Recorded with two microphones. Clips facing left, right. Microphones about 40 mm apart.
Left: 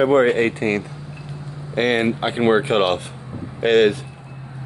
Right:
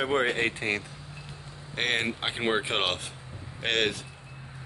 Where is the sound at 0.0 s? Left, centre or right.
Centre.